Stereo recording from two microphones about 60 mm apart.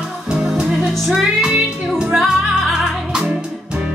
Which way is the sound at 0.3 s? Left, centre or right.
Centre.